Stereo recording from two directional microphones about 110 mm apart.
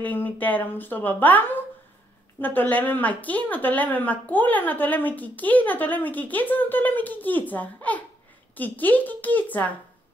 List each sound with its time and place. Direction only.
0.0 s a woman's voice: 15° left (ahead or behind)